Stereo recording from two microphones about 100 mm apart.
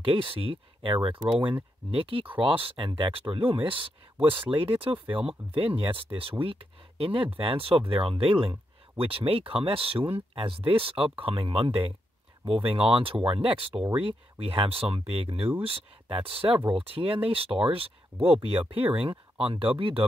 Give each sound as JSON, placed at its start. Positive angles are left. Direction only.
{"t": 0.0, "sound": "speech", "side_deg": -65}